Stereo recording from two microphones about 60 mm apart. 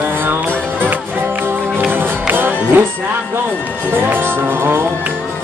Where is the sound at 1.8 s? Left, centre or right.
Right.